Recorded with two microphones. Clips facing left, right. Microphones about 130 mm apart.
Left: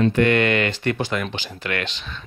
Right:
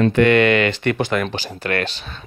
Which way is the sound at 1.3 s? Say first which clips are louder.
Right 4 dB; 35° right (ahead or behind).